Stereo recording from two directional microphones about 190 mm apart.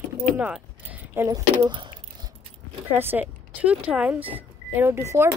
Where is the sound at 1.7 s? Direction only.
25° right (ahead or behind).